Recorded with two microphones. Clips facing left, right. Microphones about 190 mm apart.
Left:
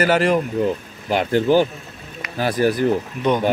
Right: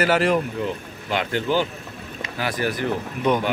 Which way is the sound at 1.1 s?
40° left (ahead or behind).